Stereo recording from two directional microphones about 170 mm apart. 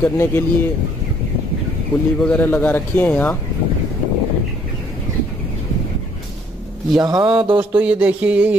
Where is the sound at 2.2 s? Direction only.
10° left (ahead or behind).